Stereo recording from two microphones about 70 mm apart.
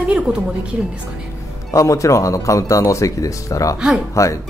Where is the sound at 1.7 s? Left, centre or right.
Left.